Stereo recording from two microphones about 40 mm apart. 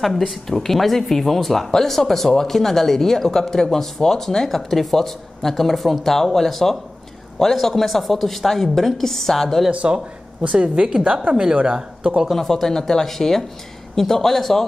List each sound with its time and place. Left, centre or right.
0.0 s speech: centre
9.9 s speech: centre
10.4 s speech: right
12.3 s speech: centre